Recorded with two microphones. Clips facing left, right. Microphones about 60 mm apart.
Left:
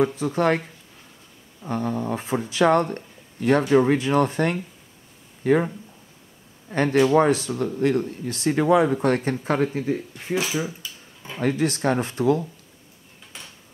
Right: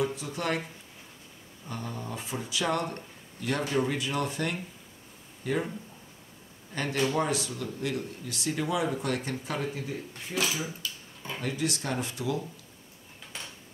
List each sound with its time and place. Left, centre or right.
0.0 s speech: left
1.6 s speech: left
6.7 s speech: left
11.3 s speech: left